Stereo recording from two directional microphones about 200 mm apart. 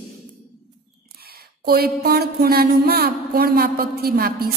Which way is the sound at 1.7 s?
50° right (ahead or behind).